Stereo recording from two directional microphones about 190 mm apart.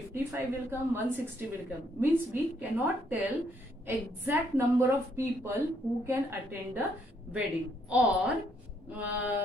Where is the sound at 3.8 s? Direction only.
10° right (ahead or behind).